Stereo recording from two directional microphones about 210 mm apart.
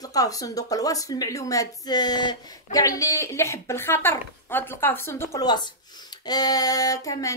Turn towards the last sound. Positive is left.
turn(degrees=15)  # may be behind; listen again after turning